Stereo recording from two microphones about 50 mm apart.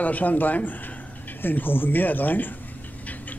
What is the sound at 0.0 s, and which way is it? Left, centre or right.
Speech, left.